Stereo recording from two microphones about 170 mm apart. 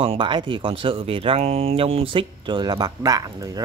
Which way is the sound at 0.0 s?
30° right (ahead or behind).